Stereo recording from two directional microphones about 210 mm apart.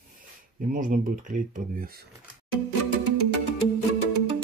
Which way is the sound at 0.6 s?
40° right (ahead or behind).